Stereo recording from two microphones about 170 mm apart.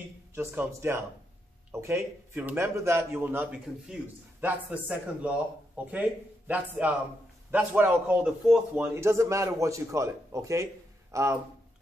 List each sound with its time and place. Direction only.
0.3 s a man's voice: 15° right (ahead or behind)